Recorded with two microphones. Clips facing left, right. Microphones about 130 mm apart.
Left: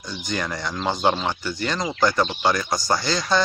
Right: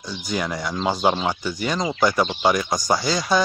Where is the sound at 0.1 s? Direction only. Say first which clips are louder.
Right 2 dB; 10° right (ahead or behind).